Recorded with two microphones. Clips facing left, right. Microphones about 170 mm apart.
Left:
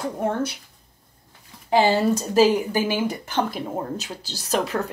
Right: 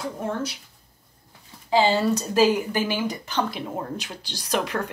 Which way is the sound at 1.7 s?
60° left (ahead or behind).